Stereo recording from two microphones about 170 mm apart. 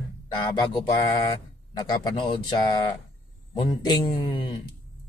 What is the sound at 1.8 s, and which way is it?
Speech, 25° left (ahead or behind).